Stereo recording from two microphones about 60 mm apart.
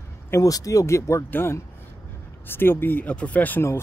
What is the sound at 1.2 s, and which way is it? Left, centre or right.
Speech, left.